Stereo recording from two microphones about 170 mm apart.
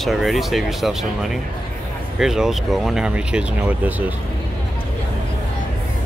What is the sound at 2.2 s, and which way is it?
Speech, 5° right (ahead or behind).